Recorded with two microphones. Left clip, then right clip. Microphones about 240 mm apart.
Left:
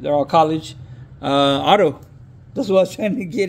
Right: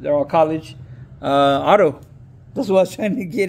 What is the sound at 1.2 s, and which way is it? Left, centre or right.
Speech, centre.